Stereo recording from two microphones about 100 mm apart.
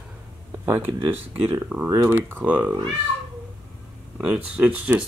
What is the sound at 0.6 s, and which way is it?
Speech, 25° right (ahead or behind).